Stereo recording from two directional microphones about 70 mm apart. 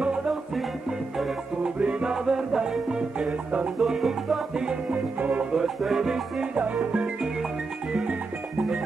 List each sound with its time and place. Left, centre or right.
0.0 s music: centre
1.8 s music: centre
3.8 s music: centre
4.9 s music: right